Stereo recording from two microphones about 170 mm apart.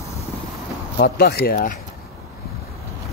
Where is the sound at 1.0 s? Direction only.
70° left (ahead or behind).